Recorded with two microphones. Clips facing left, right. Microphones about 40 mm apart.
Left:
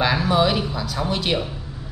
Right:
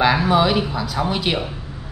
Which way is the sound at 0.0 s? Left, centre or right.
Centre.